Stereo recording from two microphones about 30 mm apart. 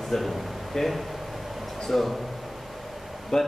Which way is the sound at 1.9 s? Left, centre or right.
Centre.